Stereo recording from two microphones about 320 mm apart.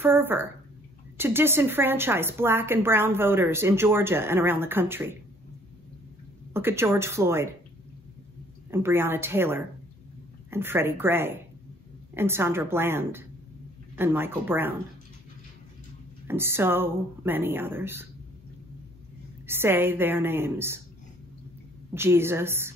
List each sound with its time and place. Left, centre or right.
0.0 s a woman's voice: centre
6.5 s a woman's voice: centre
8.6 s a woman's voice: centre
16.3 s a woman's voice: centre
19.4 s a woman's voice: centre
21.9 s a woman's voice: centre